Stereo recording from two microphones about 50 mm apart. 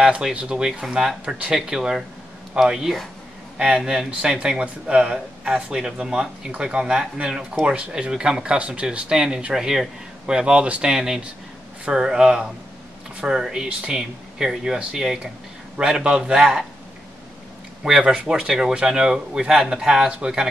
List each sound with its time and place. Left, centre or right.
0.0 s speech: centre
3.5 s speech: centre
9.1 s speech: centre
17.8 s speech: centre